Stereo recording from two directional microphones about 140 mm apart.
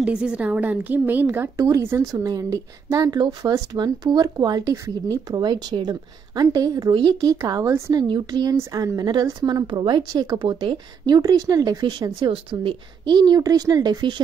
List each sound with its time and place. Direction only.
0.0 s a woman's voice: 10° right (ahead or behind); by 14.2 s 30° right (ahead or behind)